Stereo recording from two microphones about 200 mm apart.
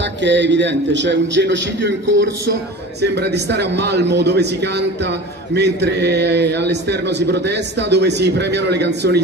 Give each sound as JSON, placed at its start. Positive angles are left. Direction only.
{"t": 0.0, "sound": "a man's voice", "side_deg": -65}